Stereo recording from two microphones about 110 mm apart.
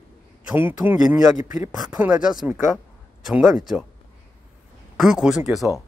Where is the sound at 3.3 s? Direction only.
5° right (ahead or behind).